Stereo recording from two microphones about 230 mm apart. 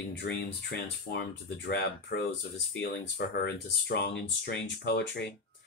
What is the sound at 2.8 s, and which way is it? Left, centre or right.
Speech, left.